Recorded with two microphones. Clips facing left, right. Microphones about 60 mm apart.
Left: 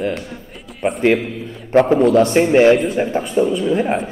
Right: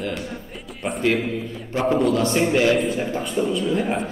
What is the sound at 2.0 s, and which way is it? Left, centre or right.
Speech, left.